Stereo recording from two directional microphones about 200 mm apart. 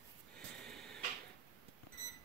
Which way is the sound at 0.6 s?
5° left (ahead or behind).